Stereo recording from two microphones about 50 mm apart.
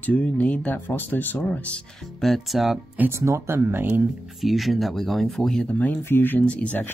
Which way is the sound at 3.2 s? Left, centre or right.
Right.